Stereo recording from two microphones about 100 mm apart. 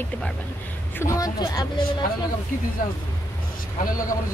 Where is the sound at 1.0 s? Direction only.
35° left (ahead or behind).